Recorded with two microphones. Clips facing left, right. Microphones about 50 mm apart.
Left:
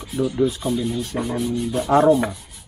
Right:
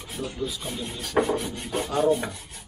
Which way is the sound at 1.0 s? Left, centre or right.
Right.